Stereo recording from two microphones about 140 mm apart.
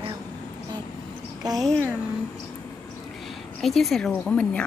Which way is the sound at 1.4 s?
25° right (ahead or behind).